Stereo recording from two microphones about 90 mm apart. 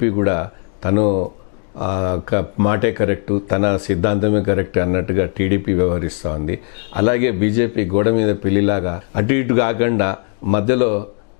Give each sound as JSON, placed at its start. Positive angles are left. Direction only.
{"t": 0.0, "sound": "speech", "side_deg": 15}